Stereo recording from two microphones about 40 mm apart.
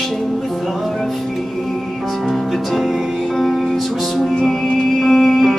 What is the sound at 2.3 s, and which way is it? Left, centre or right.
Music, centre.